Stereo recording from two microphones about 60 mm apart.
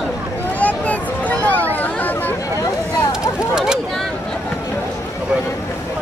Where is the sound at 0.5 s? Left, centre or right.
Left.